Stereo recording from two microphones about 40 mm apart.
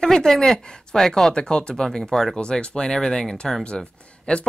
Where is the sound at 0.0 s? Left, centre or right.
Centre.